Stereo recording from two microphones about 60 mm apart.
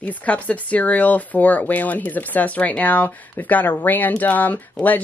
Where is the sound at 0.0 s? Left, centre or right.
Left.